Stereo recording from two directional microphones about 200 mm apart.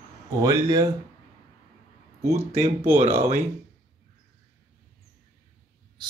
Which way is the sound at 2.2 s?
15° right (ahead or behind).